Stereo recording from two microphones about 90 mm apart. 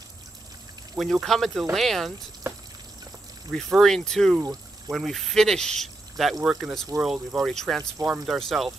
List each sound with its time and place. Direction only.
0.9 s speech: centre (ahead or behind)
3.7 s speech: 5° left (ahead or behind)
4.4 s speech: 40° right (ahead or behind)
4.9 s speech: centre (ahead or behind)